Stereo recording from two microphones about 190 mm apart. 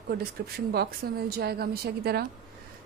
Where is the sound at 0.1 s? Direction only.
55° right (ahead or behind).